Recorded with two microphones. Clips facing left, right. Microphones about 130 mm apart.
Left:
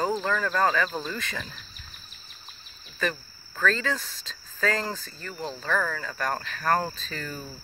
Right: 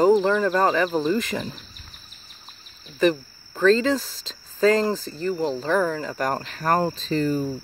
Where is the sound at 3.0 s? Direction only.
25° right (ahead or behind).